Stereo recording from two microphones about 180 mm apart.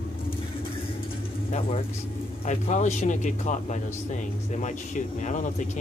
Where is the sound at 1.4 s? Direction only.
35° left (ahead or behind).